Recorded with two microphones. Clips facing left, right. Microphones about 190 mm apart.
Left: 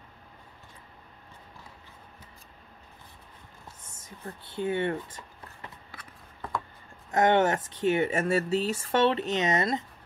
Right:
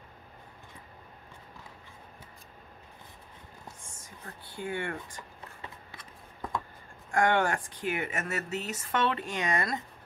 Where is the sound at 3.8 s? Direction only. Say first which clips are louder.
Left 5 dB; 25° left (ahead or behind).